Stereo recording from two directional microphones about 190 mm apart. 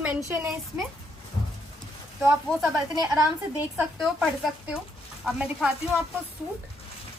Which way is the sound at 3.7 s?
5° right (ahead or behind).